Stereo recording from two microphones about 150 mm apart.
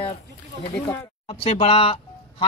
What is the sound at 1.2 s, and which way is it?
Speech, 40° left (ahead or behind).